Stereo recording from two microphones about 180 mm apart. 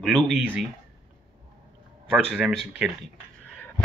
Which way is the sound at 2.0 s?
Centre (ahead or behind).